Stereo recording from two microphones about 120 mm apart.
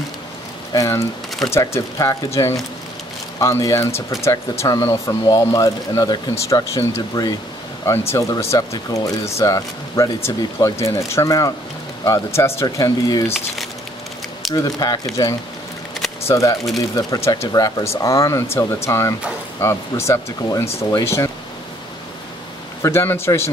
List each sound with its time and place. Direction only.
0.7 s speech: 25° left (ahead or behind)
14.5 s speech: 30° left (ahead or behind)
22.8 s speech: 20° left (ahead or behind)